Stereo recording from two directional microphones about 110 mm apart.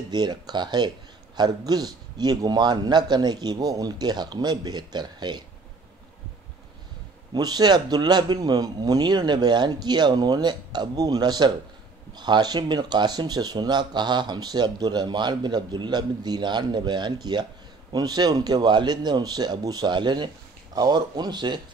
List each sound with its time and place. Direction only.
0.1 s speech: 40° right (ahead or behind)
7.3 s speech: 40° right (ahead or behind)